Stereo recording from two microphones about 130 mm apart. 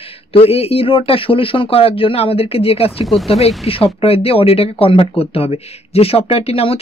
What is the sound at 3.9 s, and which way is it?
Speech, 50° left (ahead or behind).